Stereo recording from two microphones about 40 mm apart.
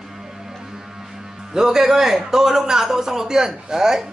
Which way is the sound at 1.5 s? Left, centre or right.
Centre.